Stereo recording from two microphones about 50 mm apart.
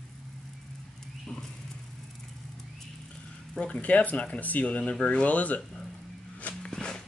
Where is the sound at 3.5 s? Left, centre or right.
Left.